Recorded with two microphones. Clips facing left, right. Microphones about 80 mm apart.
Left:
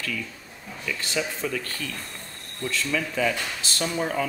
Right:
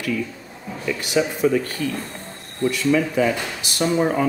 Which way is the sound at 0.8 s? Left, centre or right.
Centre.